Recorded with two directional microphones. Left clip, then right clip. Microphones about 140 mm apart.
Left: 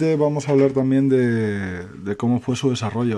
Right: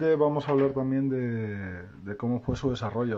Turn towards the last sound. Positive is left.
turn(degrees=15)  # may be behind; listen again after turning